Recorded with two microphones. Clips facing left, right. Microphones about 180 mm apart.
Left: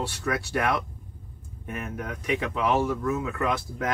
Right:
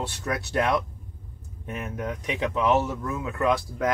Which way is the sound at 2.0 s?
20° right (ahead or behind).